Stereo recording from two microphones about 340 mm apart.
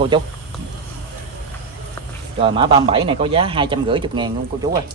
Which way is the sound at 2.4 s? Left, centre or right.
Centre.